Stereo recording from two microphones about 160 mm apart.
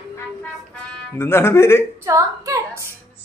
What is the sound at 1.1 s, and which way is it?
Speech, 15° left (ahead or behind).